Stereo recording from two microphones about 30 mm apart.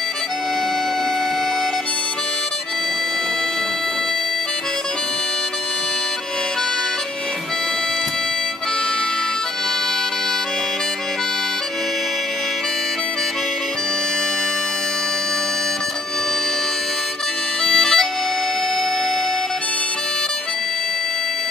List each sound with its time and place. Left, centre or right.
17.6 s bagpipes: centre